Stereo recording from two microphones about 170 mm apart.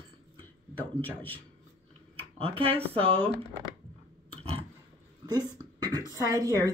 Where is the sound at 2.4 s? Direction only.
35° right (ahead or behind).